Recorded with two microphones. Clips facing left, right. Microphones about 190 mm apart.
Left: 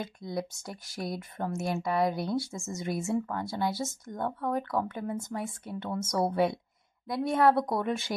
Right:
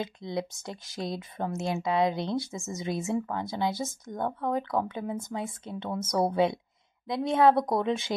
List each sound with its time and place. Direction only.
0.0 s speech: 20° right (ahead or behind)